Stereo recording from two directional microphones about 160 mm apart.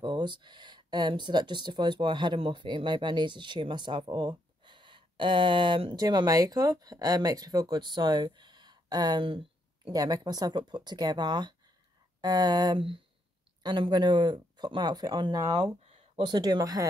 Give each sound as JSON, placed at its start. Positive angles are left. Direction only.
{"t": 0.0, "sound": "speech", "side_deg": -30}